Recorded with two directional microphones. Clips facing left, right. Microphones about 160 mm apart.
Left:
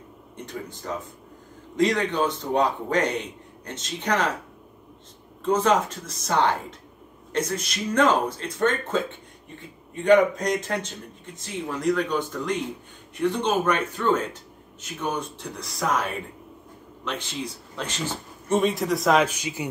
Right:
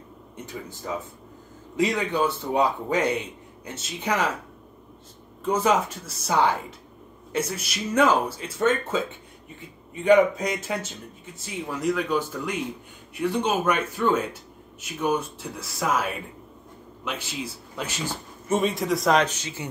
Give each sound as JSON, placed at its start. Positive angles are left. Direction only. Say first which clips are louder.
{"t": 0.5, "sound": "speech", "louder": "even", "side_deg": -5}
{"t": 5.4, "sound": "speech", "louder": "left 1 dB", "side_deg": -10}
{"t": 10.0, "sound": "a man's voice", "louder": "even", "side_deg": -5}